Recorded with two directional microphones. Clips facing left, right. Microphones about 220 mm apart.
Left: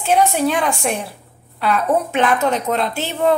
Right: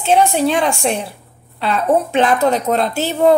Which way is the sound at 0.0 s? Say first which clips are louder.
Right 2 dB; 25° right (ahead or behind).